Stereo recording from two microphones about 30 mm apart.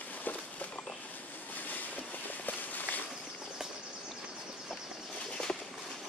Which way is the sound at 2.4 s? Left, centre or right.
Left.